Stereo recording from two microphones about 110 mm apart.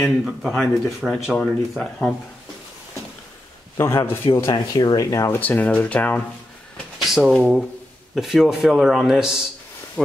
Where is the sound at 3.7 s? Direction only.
25° left (ahead or behind).